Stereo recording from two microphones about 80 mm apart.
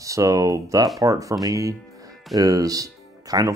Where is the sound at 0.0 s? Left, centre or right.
Right.